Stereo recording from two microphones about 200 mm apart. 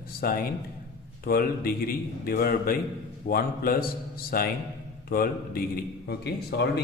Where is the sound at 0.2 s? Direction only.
45° left (ahead or behind).